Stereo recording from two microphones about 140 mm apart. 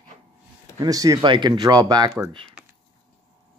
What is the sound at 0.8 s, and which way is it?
Speech, 25° right (ahead or behind).